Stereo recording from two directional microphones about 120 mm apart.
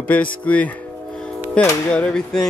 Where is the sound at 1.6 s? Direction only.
10° left (ahead or behind).